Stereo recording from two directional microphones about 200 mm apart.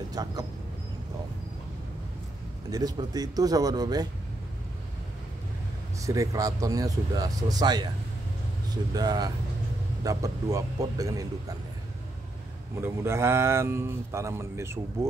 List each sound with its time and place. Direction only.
0.1 s speech: 20° right (ahead or behind)
2.7 s speech: 20° right (ahead or behind)
5.9 s speech: 15° right (ahead or behind)
12.8 s speech: 15° right (ahead or behind)